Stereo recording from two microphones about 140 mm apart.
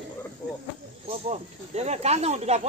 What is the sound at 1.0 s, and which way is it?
Speech, 50° right (ahead or behind).